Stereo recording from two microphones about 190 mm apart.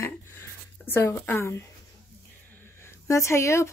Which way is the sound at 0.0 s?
15° left (ahead or behind).